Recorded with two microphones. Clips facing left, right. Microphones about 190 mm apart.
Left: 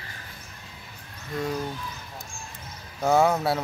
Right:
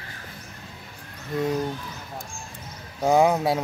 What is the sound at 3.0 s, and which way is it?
Speech, 15° right (ahead or behind).